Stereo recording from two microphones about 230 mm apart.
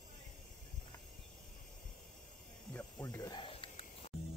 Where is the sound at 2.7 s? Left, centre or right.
Centre.